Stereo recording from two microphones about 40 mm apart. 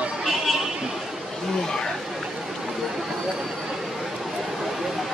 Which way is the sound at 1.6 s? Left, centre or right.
Centre.